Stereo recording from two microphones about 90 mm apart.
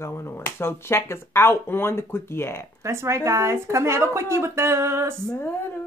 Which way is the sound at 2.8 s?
30° right (ahead or behind).